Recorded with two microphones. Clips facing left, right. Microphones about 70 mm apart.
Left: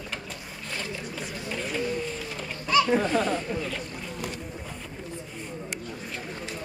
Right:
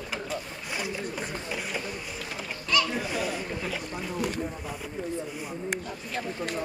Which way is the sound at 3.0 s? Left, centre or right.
Centre.